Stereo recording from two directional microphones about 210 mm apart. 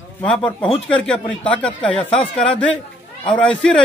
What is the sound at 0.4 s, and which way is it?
Speech, 25° left (ahead or behind).